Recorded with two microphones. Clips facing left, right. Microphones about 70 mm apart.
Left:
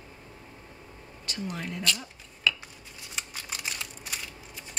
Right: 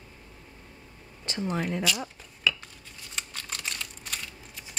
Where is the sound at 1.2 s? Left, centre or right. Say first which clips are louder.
Right 5 dB; right.